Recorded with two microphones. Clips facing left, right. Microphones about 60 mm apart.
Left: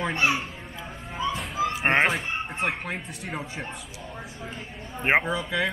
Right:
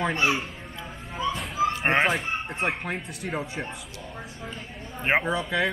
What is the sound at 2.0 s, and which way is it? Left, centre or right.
Speech, centre.